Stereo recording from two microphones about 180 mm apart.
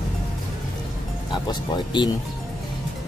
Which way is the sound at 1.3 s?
25° left (ahead or behind).